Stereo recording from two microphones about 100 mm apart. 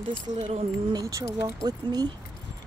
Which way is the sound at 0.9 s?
35° right (ahead or behind).